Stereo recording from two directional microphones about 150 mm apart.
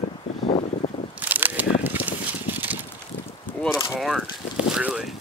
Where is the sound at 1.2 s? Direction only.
10° right (ahead or behind).